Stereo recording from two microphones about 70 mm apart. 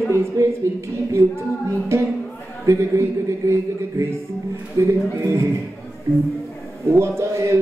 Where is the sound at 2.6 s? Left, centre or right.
Right.